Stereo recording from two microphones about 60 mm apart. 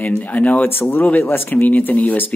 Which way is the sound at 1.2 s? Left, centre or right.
Left.